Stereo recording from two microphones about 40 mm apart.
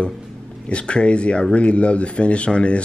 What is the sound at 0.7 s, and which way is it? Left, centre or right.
Speech, left.